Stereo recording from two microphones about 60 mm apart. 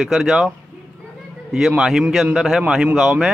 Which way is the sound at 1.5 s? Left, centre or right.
Centre.